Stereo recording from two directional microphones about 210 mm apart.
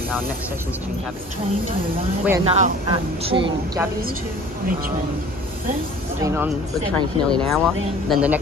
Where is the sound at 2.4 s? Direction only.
25° right (ahead or behind).